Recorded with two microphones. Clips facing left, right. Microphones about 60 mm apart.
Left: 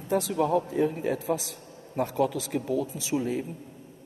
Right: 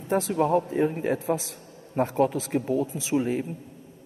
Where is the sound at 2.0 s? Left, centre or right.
Right.